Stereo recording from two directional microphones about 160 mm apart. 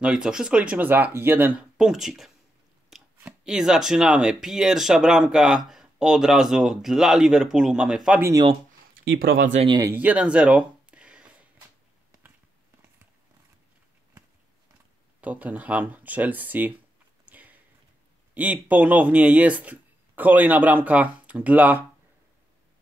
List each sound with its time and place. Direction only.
0.0 s speech: 5° right (ahead or behind)
8.2 s speech: 20° right (ahead or behind)
9.7 s speech: 20° right (ahead or behind)
9.9 s a sound: 10° right (ahead or behind)
15.1 s speech: 10° right (ahead or behind)
17.3 s a sound: 10° right (ahead or behind)
18.3 s speech: 10° right (ahead or behind)